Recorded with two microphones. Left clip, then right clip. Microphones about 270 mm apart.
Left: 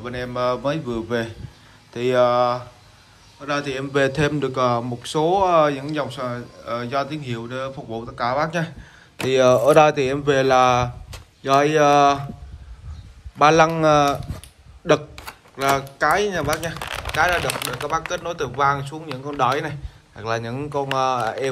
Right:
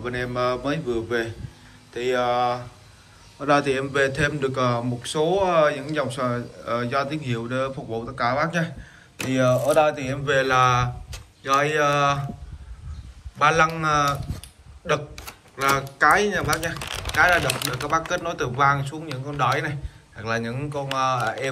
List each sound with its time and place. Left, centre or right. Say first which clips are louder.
0.0 s speech: left 1 dB; centre
3.3 s speech: right 4 dB; centre
13.4 s speech: left 4 dB; centre